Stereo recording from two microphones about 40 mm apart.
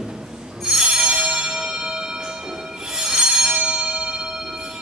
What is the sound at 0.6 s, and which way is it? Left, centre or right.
Bell, centre.